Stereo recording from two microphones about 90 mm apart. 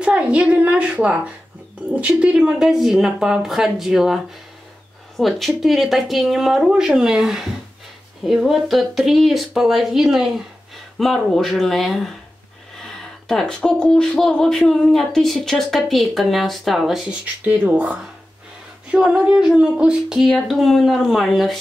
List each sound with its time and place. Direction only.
0.0 s a woman's voice: 15° right (ahead or behind); by 12.1 s centre (ahead or behind)
13.3 s speech: 5° left (ahead or behind)
17.5 s speech: 20° right (ahead or behind); by 21.5 s centre (ahead or behind)